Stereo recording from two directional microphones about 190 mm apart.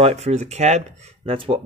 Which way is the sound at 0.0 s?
35° right (ahead or behind).